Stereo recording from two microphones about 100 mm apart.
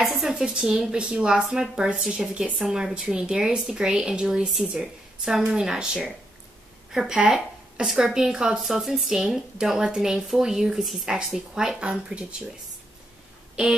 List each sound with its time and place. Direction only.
0.0 s a woman's voice: 5° right (ahead or behind)